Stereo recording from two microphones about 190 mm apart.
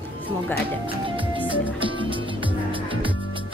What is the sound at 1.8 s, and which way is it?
Music, 25° right (ahead or behind).